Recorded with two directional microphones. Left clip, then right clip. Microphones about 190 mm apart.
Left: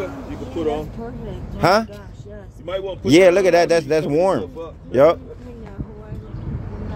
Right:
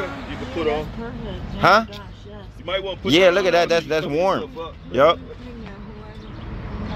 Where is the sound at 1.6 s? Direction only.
50° left (ahead or behind).